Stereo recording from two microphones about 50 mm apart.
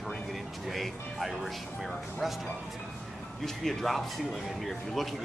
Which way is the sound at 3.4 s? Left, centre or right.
Centre.